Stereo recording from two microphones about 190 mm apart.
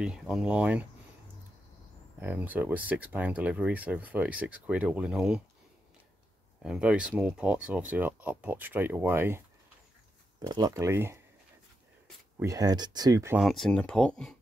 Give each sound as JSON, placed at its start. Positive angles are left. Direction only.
{"t": 0.0, "sound": "speech", "side_deg": -5}
{"t": 2.1, "sound": "speech", "side_deg": -10}
{"t": 6.6, "sound": "speech", "side_deg": -5}
{"t": 10.4, "sound": "speech", "side_deg": -20}
{"t": 12.4, "sound": "speech", "side_deg": -20}
{"t": 13.4, "sound": "speech", "side_deg": 0}